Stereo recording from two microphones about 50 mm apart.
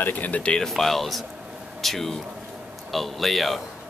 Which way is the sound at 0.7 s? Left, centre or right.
Centre.